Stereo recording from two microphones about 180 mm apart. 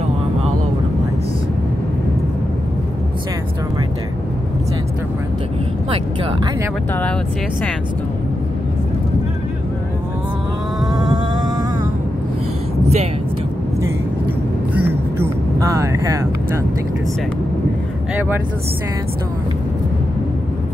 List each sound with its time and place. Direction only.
10.9 s a sound: 20° right (ahead or behind)
12.8 s vehicle: 35° right (ahead or behind)
15.1 s vehicle: 15° right (ahead or behind)